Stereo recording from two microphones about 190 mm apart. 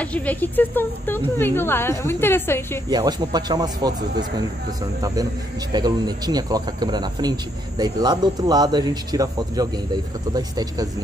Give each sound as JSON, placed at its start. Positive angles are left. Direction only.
{"t": 0.0, "sound": "speech", "side_deg": 5}
{"t": 2.9, "sound": "a man's voice", "side_deg": -20}
{"t": 5.0, "sound": "a man's voice", "side_deg": -20}